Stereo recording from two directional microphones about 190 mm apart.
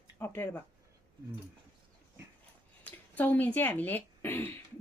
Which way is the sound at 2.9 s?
10° left (ahead or behind).